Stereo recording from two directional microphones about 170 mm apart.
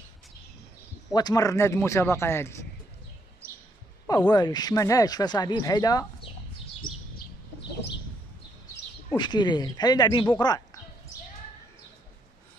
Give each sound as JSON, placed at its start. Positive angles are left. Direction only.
{"t": 1.1, "sound": "speech", "side_deg": 20}
{"t": 4.1, "sound": "speech", "side_deg": 25}
{"t": 6.8, "sound": "bird", "side_deg": 55}
{"t": 9.1, "sound": "speech", "side_deg": 25}